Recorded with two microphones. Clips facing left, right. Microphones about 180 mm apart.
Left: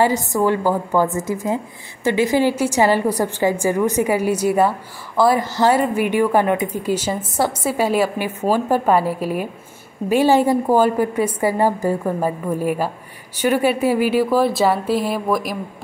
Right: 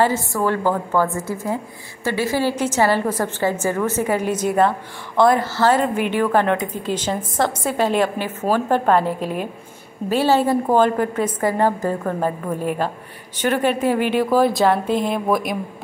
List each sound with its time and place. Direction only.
0.0 s a woman's voice: 15° left (ahead or behind); by 15.5 s centre (ahead or behind)